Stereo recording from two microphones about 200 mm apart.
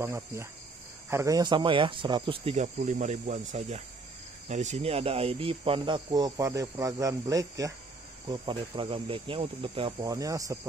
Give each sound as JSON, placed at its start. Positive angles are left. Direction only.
{"t": 0.0, "sound": "cricket", "side_deg": -15}
{"t": 1.1, "sound": "speech", "side_deg": -15}